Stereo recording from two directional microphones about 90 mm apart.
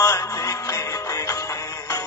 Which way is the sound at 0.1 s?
35° left (ahead or behind).